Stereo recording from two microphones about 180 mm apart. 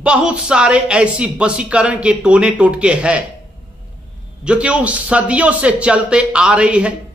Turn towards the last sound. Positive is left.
turn(degrees=-5)  # may be behind; listen again after turning